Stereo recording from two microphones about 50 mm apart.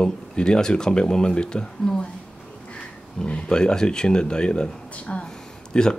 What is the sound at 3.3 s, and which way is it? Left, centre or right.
Speech, left.